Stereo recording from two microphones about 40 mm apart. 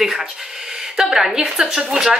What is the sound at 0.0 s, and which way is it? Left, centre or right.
Speech, centre.